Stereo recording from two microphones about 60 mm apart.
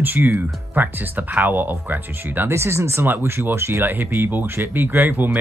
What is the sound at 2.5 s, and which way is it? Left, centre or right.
Speech, right.